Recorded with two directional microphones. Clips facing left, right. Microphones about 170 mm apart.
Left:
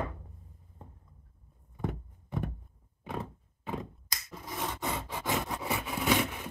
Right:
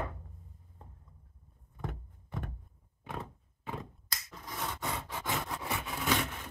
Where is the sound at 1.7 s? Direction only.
5° left (ahead or behind).